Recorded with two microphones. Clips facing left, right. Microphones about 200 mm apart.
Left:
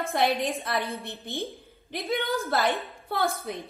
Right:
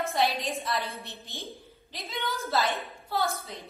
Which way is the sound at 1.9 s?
55° left (ahead or behind).